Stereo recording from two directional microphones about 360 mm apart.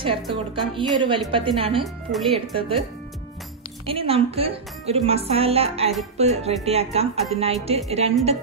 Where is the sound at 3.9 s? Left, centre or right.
Centre.